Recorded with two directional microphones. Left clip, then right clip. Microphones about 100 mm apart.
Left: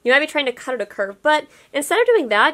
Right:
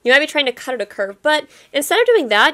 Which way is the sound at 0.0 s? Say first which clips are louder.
Right 3 dB; 25° right (ahead or behind).